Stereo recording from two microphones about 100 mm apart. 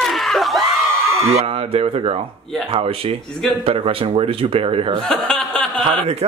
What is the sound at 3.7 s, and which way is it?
A man's voice, 70° right (ahead or behind).